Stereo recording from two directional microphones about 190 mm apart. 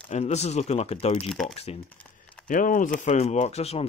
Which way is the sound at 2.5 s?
45° left (ahead or behind).